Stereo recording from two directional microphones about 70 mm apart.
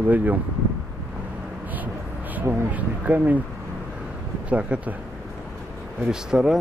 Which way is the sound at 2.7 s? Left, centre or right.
Right.